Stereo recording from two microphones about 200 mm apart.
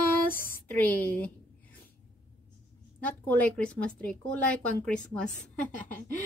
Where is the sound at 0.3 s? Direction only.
45° left (ahead or behind).